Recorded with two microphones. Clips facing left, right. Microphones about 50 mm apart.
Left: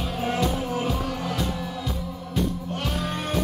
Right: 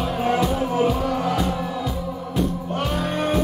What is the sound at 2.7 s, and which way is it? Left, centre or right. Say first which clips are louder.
Music: right 5 dB; centre.